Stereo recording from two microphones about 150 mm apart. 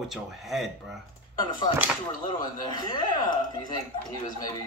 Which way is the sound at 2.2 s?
25° left (ahead or behind).